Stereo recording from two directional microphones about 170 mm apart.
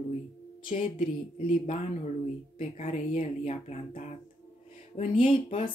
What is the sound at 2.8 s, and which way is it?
Speech, 40° left (ahead or behind).